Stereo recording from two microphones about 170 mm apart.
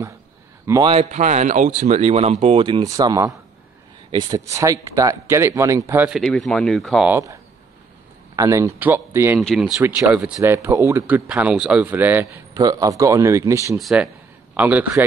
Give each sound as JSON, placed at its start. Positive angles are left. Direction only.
{"t": 0.8, "sound": "speech", "side_deg": -40}
{"t": 6.0, "sound": "speech", "side_deg": 0}
{"t": 7.1, "sound": "speech", "side_deg": -15}
{"t": 8.4, "sound": "speech", "side_deg": -15}
{"t": 9.4, "sound": "speech", "side_deg": 0}
{"t": 9.8, "sound": "speech", "side_deg": -15}
{"t": 12.5, "sound": "speech", "side_deg": -20}
{"t": 13.7, "sound": "speech", "side_deg": 0}